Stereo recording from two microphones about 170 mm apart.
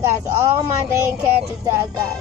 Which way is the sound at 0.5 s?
15° right (ahead or behind).